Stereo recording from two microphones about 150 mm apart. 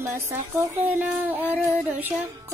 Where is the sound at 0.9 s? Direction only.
10° right (ahead or behind).